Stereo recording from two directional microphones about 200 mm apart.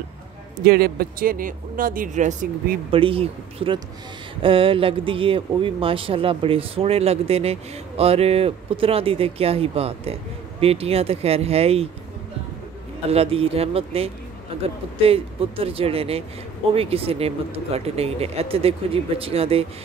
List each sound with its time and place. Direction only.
0.7 s speech: 50° right (ahead or behind); by 11.9 s 30° right (ahead or behind)
13.1 s speech: 30° right (ahead or behind)